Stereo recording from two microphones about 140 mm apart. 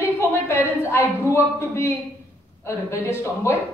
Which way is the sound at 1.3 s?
20° left (ahead or behind).